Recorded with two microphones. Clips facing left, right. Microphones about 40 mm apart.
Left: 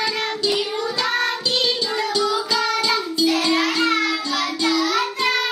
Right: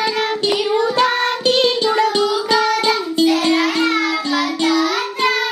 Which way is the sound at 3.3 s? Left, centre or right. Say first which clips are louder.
Right 2 dB; centre.